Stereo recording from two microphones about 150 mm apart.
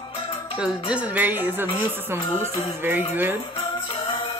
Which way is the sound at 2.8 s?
15° right (ahead or behind).